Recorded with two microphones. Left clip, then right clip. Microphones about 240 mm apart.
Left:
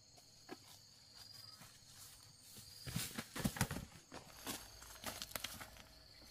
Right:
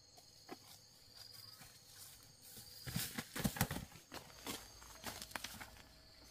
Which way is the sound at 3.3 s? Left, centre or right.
Right.